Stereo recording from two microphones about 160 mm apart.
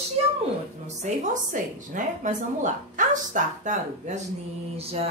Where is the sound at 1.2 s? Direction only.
50° right (ahead or behind).